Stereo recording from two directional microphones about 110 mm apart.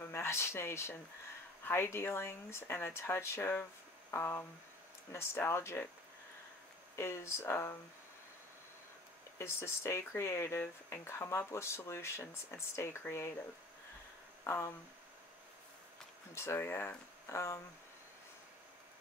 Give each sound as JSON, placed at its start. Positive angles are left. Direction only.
{"t": 0.1, "sound": "speech", "side_deg": 25}
{"t": 7.0, "sound": "speech", "side_deg": 25}
{"t": 9.4, "sound": "speech", "side_deg": 25}
{"t": 14.4, "sound": "speech", "side_deg": 25}
{"t": 16.3, "sound": "speech", "side_deg": 25}